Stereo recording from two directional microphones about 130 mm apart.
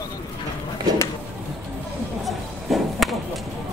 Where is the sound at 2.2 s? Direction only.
Centre (ahead or behind).